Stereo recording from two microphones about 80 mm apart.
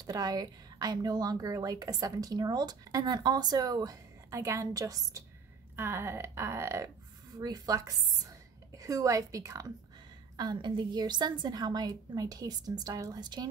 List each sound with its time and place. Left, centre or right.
0.0 s speech: right
5.8 s speech: right
7.3 s a woman's voice: right
10.3 s a woman's voice: right